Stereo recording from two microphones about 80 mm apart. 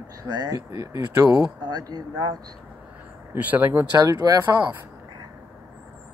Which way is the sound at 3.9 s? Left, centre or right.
Right.